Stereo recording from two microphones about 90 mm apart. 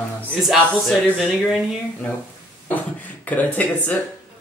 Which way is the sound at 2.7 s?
20° left (ahead or behind).